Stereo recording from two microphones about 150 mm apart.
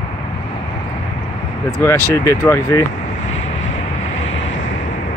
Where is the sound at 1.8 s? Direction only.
15° left (ahead or behind).